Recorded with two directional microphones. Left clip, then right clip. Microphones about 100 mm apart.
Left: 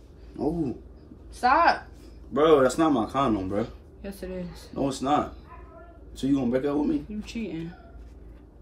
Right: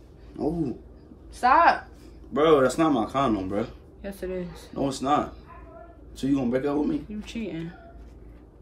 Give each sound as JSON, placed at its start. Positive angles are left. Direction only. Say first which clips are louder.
{"t": 0.4, "sound": "a man's voice", "louder": "even", "side_deg": -5}
{"t": 1.4, "sound": "a woman's voice", "louder": "right 2 dB", "side_deg": -20}
{"t": 2.3, "sound": "a man's voice", "louder": "even", "side_deg": 0}
{"t": 4.0, "sound": "speech", "louder": "right 4 dB", "side_deg": -30}
{"t": 4.7, "sound": "a man's voice", "louder": "right 1 dB", "side_deg": 0}
{"t": 7.2, "sound": "speech", "louder": "even", "side_deg": -35}